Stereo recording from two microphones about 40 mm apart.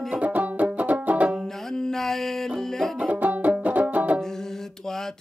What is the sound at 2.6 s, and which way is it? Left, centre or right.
Music, centre.